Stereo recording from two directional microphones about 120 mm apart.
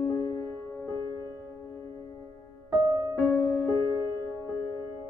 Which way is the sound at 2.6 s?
30° right (ahead or behind).